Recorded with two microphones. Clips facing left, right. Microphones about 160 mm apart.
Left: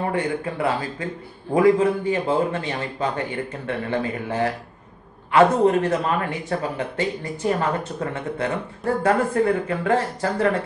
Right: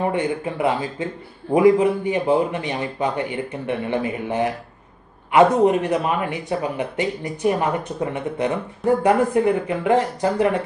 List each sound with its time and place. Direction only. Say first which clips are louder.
0.1 s speech: right 1 dB; 20° right (ahead or behind)